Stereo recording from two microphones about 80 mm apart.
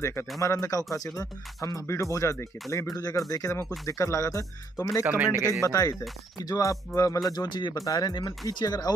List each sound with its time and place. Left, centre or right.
0.4 s speech: left
2.9 s speech: left
5.0 s speech: right
5.3 s speech: right
5.6 s speech: left
7.3 s speech: left
7.7 s speech: left